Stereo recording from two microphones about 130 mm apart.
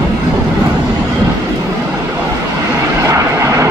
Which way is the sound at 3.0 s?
25° right (ahead or behind).